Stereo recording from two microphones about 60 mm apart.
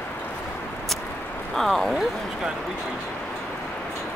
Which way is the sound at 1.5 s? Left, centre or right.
Centre.